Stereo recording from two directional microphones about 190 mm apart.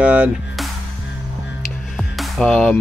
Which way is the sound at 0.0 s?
5° right (ahead or behind).